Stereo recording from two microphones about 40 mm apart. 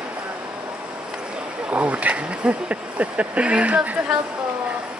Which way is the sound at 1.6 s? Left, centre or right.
Right.